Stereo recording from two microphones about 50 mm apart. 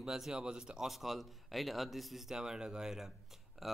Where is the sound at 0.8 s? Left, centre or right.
Centre.